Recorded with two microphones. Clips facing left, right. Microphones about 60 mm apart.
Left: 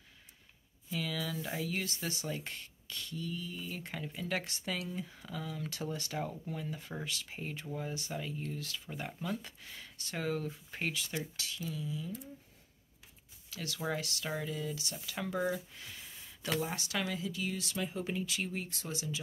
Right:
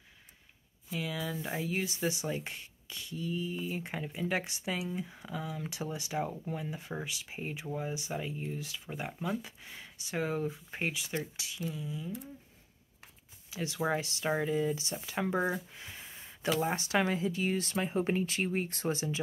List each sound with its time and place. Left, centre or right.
0.9 s speech: centre
13.5 s speech: right